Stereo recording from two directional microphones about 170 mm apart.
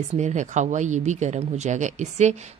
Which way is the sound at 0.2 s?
45° right (ahead or behind).